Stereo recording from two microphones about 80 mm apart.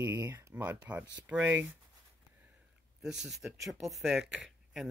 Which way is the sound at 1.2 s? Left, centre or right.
Right.